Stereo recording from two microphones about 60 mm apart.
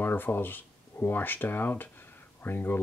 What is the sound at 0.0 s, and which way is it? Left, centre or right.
Speech, left.